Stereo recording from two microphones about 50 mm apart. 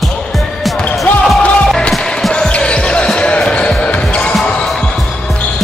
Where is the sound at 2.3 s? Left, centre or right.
Centre.